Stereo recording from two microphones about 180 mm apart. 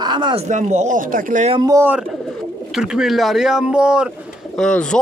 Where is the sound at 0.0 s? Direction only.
25° right (ahead or behind).